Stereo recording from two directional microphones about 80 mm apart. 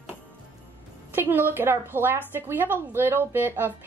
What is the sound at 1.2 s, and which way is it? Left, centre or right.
A woman's voice, right.